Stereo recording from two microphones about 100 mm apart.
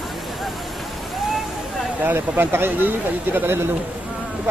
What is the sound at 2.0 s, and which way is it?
Speech, 20° right (ahead or behind).